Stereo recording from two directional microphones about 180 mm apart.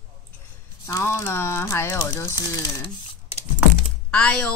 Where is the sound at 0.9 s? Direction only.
15° left (ahead or behind).